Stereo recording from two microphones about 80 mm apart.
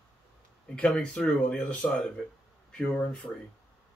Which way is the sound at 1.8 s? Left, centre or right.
Centre.